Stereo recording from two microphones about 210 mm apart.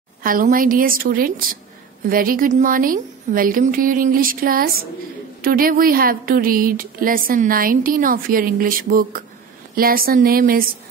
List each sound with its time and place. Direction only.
0.2 s a woman's voice: 40° right (ahead or behind)